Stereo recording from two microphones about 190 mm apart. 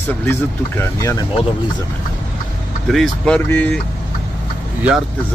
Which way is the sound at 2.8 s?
Centre (ahead or behind).